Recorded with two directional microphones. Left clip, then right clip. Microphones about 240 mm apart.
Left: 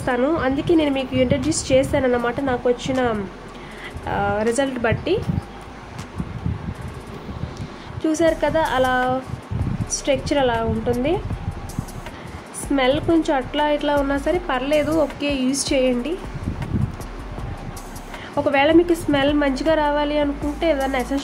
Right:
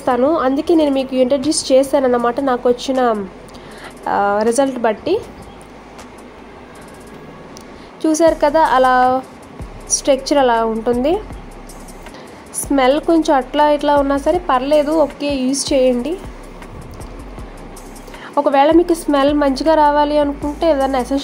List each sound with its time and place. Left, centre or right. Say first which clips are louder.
0.4 s a woman's voice: right 5 dB; centre
4.1 s a woman's voice: right 6 dB; centre
8.0 s a woman's voice: right 6 dB; centre
12.7 s a woman's voice: right 5 dB; centre
18.4 s a woman's voice: right 4 dB; centre